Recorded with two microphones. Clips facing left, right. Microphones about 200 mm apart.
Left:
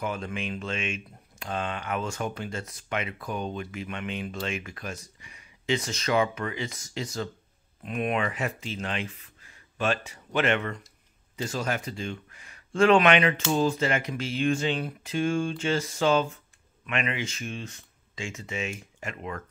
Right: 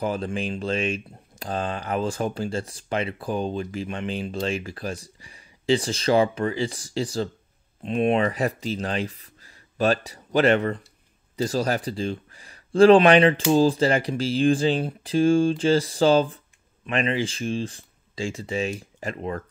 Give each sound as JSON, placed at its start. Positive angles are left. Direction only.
{"t": 0.0, "sound": "speech", "side_deg": -35}